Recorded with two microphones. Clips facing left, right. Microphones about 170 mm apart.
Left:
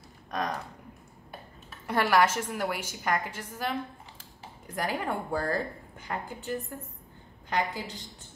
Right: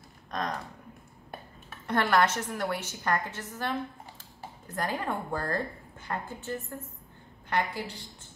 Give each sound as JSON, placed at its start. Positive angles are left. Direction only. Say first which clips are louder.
{"t": 0.3, "sound": "speech", "louder": "left 1 dB", "side_deg": 10}
{"t": 1.9, "sound": "a woman's voice", "louder": "left 1 dB", "side_deg": 10}
{"t": 4.7, "sound": "a woman's voice", "louder": "left 1 dB", "side_deg": 10}